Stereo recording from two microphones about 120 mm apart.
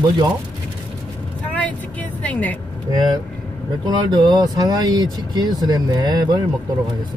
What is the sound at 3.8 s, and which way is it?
Speech, 40° right (ahead or behind).